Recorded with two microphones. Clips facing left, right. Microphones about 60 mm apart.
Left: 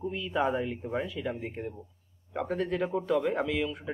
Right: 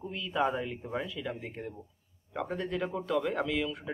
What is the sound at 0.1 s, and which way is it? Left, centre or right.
Speech, centre.